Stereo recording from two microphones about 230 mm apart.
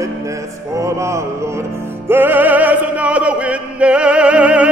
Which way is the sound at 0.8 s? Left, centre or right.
Centre.